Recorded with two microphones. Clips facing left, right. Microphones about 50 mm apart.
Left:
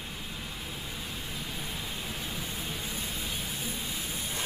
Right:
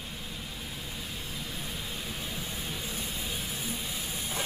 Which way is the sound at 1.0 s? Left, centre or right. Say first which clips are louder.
Left 1 dB; centre.